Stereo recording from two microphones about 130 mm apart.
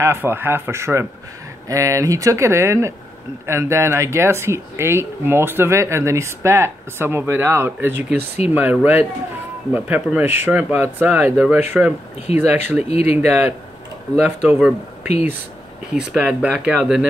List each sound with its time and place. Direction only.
0.0 s speech: 20° right (ahead or behind)
12.9 s speech: 55° left (ahead or behind)
14.1 s speech: 10° right (ahead or behind)
15.9 s speech: 5° right (ahead or behind)